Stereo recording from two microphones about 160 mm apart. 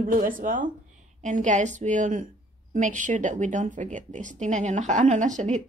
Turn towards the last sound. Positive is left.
turn(degrees=-50)  # may be behind; listen again after turning